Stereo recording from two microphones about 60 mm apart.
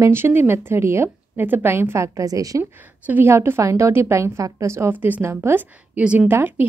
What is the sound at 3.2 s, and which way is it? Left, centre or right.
A woman's voice, right.